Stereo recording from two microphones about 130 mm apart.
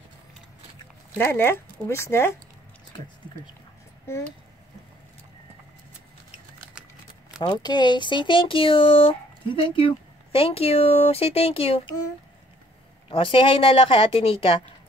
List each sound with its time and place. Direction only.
1.1 s speech: 15° left (ahead or behind)
7.3 s speech: 35° left (ahead or behind)
13.1 s speech: 40° left (ahead or behind)